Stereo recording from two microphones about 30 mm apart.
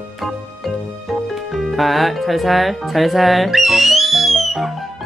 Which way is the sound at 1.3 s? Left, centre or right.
Centre.